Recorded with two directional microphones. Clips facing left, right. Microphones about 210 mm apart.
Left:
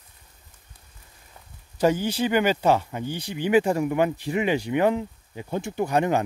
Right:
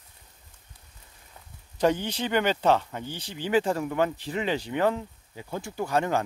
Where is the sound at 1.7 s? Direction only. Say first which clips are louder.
Left 3 dB; 5° left (ahead or behind).